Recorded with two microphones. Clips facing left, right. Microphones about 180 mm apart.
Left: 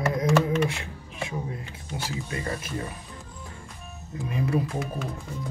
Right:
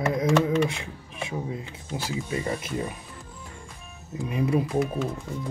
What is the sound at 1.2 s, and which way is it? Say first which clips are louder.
Speech: right 1 dB; 20° right (ahead or behind).